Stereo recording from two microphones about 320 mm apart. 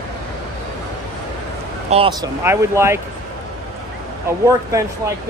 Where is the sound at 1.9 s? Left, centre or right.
Centre.